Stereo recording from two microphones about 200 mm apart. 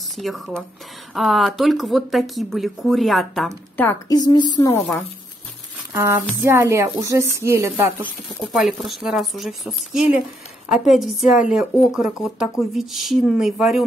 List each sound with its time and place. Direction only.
0.1 s speech: centre (ahead or behind)
5.9 s a woman's voice: 15° right (ahead or behind)
8.6 s speech: centre (ahead or behind)